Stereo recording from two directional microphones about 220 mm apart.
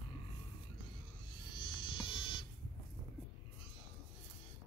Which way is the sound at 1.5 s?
20° left (ahead or behind).